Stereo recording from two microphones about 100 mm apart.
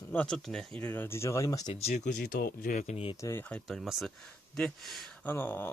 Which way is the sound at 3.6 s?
Centre (ahead or behind).